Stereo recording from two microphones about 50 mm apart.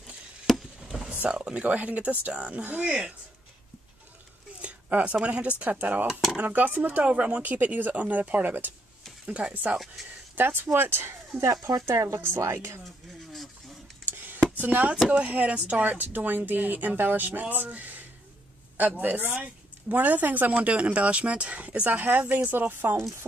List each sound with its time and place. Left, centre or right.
0.6 s a sound: centre
1.4 s speech: right
4.6 s a woman's voice: right
9.2 s speech: right
10.3 s speech: right
11.9 s speech: right
12.2 s a woman's voice: right
14.1 s a sound: right
14.6 s speech: right
15.0 s speech: centre
15.3 s a woman's voice: right
22.5 s speech: right